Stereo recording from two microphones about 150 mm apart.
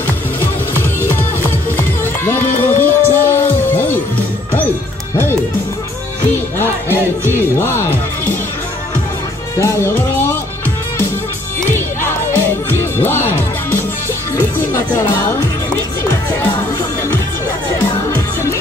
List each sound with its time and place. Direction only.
0.7 s music: 15° left (ahead or behind)
6.9 s music: 15° left (ahead or behind)
9.6 s music: 20° left (ahead or behind)
11.7 s music: 15° left (ahead or behind)